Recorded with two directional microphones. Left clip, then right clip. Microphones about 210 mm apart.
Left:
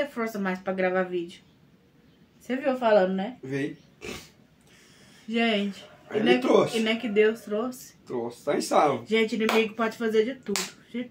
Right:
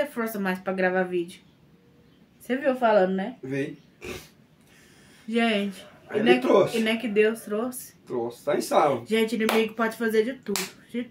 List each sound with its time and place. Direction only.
0.0 s speech: 15° right (ahead or behind)
2.4 s speech: 10° right (ahead or behind)
3.4 s speech: 10° left (ahead or behind)
5.3 s speech: 15° right (ahead or behind)
6.1 s speech: 10° left (ahead or behind)
6.7 s speech: 15° right (ahead or behind)
8.3 s speech: 10° left (ahead or behind)
9.0 s speech: 15° right (ahead or behind)